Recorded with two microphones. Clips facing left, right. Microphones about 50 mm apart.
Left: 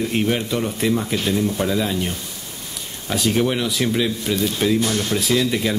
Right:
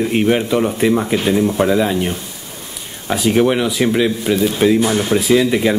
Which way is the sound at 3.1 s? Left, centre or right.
Centre.